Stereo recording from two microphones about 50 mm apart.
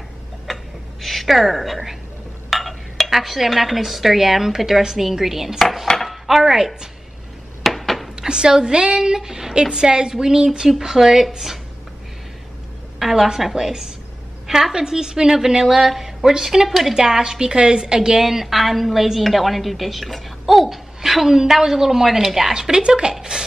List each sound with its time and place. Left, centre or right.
0.5 s a sound: centre
1.0 s a woman's voice: centre
5.6 s cutlery: centre
5.9 s dishes: centre
7.6 s a sound: centre
8.2 s a woman's voice: centre
13.0 s a woman's voice: centre